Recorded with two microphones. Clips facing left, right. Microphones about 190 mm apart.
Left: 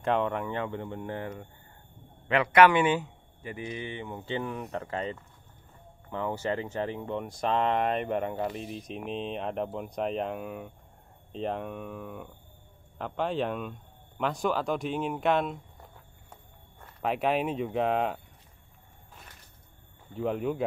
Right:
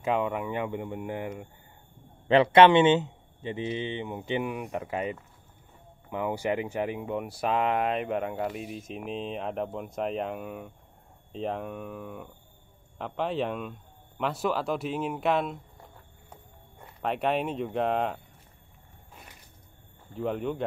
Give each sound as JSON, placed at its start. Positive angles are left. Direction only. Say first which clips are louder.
{"t": 0.0, "sound": "speech", "louder": "even", "side_deg": -5}
{"t": 2.2, "sound": "speech", "louder": "right 3 dB", "side_deg": -30}
{"t": 20.2, "sound": "speech", "louder": "left 1 dB", "side_deg": 0}